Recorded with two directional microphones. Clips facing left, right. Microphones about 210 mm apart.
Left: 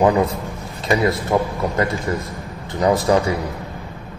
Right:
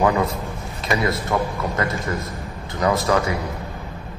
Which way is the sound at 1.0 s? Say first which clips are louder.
Left 3 dB; 30° left (ahead or behind).